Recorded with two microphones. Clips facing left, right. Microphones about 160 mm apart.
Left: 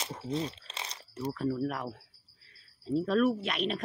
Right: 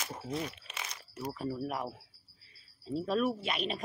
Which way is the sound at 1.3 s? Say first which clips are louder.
Left 4 dB; 10° right (ahead or behind).